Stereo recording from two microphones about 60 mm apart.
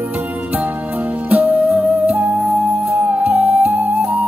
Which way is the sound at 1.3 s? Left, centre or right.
Right.